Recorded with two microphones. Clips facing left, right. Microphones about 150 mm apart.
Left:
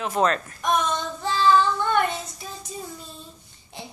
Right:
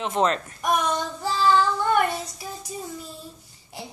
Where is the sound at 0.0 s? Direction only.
25° right (ahead or behind).